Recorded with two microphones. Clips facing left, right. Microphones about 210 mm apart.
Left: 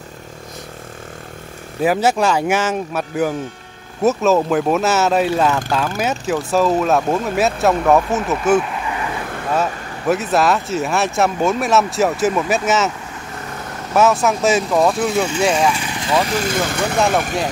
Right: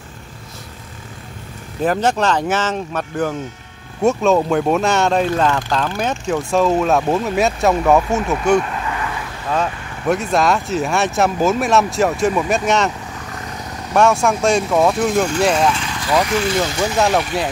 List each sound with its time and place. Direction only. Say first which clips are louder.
1.8 s speech: left 1 dB; 10° left (ahead or behind)
13.9 s speech: even; 5° left (ahead or behind)
15.7 s vehicle: even; 15° left (ahead or behind)
16.3 s speech: right 2 dB; 50° left (ahead or behind)